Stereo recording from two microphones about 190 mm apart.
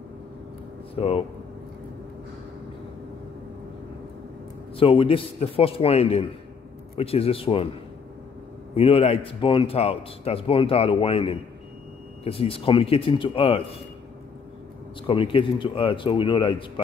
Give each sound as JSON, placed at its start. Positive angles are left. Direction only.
{"t": 0.9, "sound": "speech", "side_deg": 30}
{"t": 4.7, "sound": "a man's voice", "side_deg": 30}
{"t": 8.7, "sound": "a man's voice", "side_deg": 30}
{"t": 15.0, "sound": "a man's voice", "side_deg": 25}